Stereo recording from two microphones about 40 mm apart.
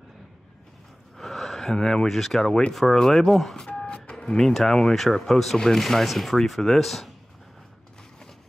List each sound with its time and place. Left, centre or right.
1.1 s a sound: centre
2.0 s speech: centre
3.3 s speech: centre
3.5 s a sound: centre
3.9 s telephone dialing: left
4.4 s speech: centre